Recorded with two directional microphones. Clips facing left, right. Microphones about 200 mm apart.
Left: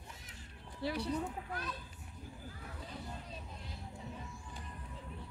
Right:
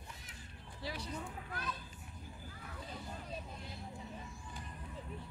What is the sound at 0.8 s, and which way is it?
Speech, 60° left (ahead or behind).